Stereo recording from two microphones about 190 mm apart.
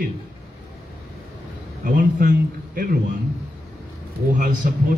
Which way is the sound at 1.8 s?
45° right (ahead or behind).